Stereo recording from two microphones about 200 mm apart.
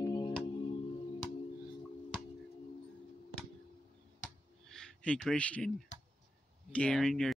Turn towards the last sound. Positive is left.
turn(degrees=0)  # may be behind; listen again after turning